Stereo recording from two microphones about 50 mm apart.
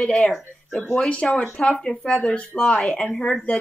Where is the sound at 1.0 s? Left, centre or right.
Left.